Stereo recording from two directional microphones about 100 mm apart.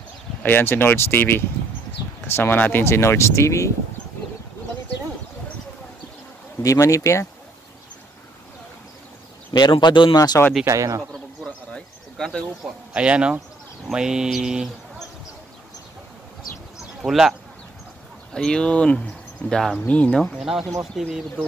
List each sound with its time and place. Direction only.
0.4 s speech: 20° left (ahead or behind)
6.6 s speech: 35° left (ahead or behind)
9.5 s speech: 50° left (ahead or behind)
10.6 s speech: 35° right (ahead or behind)
11.0 s a sound: 5° left (ahead or behind)
12.6 s mantra: 10° right (ahead or behind)
17.0 s speech: centre (ahead or behind)
18.3 s speech: 10° left (ahead or behind)